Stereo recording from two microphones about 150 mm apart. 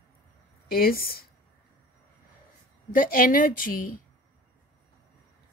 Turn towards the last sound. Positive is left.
turn(degrees=65)  # may be behind; listen again after turning